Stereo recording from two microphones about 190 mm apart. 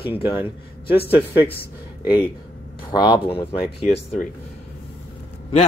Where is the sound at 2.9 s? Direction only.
20° left (ahead or behind).